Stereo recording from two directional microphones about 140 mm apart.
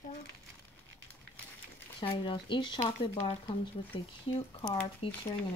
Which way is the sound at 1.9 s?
35° left (ahead or behind).